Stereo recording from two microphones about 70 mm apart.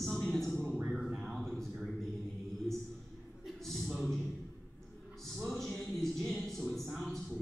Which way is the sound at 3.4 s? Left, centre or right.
Centre.